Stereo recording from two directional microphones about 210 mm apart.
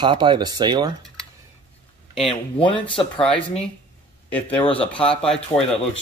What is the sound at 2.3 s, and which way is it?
Speech, 25° left (ahead or behind).